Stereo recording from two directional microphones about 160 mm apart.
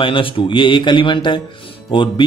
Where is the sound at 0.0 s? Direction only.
35° left (ahead or behind).